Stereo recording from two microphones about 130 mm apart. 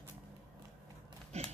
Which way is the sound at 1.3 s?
55° right (ahead or behind).